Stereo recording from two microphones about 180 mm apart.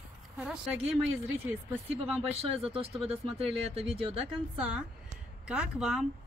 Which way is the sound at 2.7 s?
35° right (ahead or behind).